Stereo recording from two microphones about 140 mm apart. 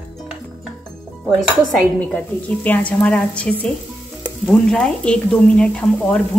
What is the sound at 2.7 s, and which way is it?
A woman's voice, 10° left (ahead or behind).